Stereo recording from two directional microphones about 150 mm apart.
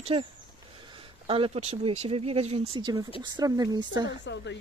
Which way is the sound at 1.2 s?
35° right (ahead or behind).